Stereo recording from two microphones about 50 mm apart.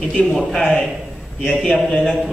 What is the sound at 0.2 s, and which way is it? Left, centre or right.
A man's voice, centre.